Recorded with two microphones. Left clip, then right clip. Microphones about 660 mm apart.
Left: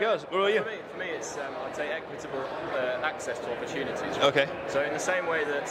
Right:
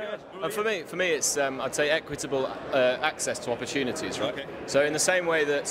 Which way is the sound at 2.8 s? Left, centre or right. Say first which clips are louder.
Right 7 dB; right.